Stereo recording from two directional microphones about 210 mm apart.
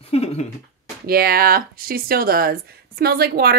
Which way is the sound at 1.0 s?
45° right (ahead or behind).